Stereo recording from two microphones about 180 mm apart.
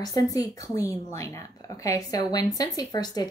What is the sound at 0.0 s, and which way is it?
A woman's voice, 20° left (ahead or behind).